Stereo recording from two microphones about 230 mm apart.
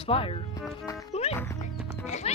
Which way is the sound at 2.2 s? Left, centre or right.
Left.